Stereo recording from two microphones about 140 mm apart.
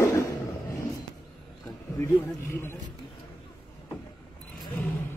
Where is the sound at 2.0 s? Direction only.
15° left (ahead or behind).